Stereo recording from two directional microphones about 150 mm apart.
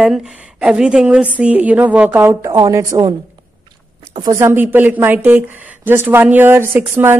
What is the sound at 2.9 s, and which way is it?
Speech, 25° right (ahead or behind).